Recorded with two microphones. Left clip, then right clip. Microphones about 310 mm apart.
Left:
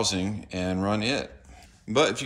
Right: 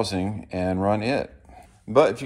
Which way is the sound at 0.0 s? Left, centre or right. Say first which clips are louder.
Right 1 dB; centre.